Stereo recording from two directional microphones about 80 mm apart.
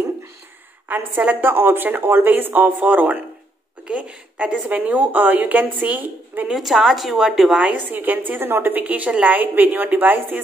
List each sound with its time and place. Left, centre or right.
0.8 s a woman's voice: right
6.5 s a woman's voice: centre
7.7 s a woman's voice: right